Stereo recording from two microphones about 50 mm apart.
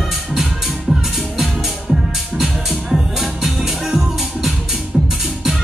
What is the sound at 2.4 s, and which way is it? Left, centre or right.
Music, centre.